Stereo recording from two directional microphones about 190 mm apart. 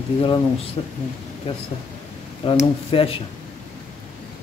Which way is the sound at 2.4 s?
30° left (ahead or behind).